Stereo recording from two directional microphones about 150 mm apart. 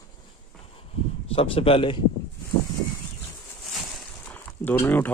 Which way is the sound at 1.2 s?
40° left (ahead or behind).